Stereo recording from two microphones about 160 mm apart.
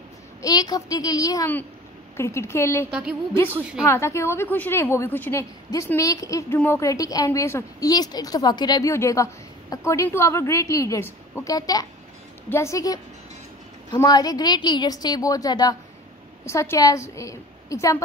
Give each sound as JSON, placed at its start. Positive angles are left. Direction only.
{"t": 0.4, "sound": "a woman's voice", "side_deg": 25}
{"t": 2.9, "sound": "a woman's voice", "side_deg": -5}
{"t": 3.8, "sound": "a woman's voice", "side_deg": 15}